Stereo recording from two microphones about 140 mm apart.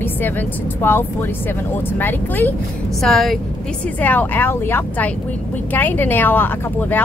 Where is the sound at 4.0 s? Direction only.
10° left (ahead or behind).